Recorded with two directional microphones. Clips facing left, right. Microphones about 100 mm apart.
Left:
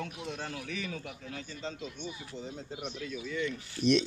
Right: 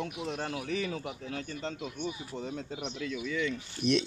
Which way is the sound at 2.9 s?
90° right.